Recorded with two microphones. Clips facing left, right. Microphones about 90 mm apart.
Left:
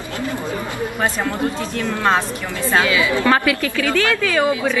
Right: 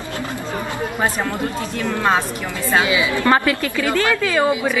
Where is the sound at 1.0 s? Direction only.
15° right (ahead or behind).